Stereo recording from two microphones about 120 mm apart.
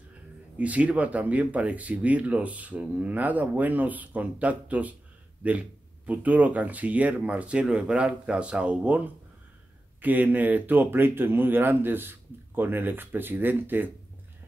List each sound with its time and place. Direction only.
0.6 s speech: 10° right (ahead or behind)